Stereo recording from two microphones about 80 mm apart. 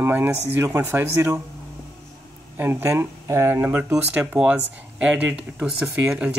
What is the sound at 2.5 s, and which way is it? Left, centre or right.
Speech, right.